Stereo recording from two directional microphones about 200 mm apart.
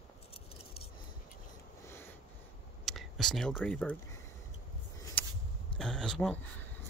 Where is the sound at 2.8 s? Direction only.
Centre (ahead or behind).